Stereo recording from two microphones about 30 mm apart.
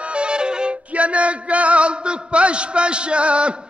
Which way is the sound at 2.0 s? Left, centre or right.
Right.